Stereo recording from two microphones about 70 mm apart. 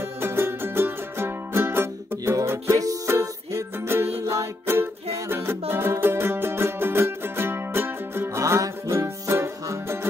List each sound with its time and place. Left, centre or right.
0.2 s music: right
8.4 s music: right